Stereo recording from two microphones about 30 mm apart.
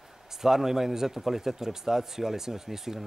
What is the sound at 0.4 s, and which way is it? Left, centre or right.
Speech, centre.